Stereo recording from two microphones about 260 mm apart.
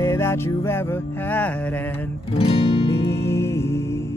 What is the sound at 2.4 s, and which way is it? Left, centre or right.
Guitar, left.